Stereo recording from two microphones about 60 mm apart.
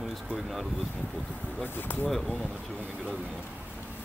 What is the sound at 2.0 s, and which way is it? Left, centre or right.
Speech, centre.